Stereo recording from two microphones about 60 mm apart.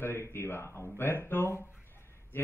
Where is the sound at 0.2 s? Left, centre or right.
Left.